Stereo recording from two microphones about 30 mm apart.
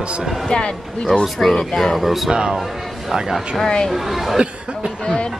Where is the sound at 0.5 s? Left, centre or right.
Left.